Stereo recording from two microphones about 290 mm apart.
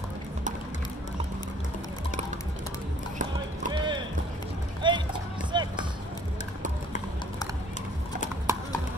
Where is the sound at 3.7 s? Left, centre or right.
Centre.